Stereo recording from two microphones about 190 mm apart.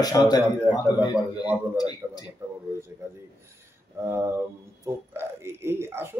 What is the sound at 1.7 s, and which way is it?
Speech, 20° left (ahead or behind).